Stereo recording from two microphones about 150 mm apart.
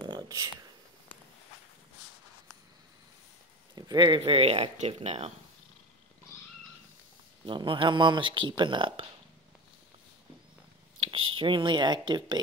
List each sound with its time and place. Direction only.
0.0 s a sound: 25° right (ahead or behind)
3.7 s speech: 25° right (ahead or behind); by 5.3 s 45° right (ahead or behind)
7.4 s speech: 35° right (ahead or behind)
11.0 s speech: 35° right (ahead or behind)